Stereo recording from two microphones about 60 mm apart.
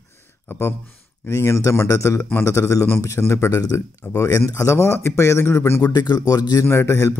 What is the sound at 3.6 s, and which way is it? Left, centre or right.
Speech, left.